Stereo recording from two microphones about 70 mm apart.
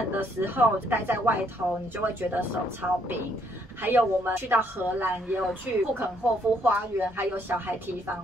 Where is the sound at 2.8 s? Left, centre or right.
Centre.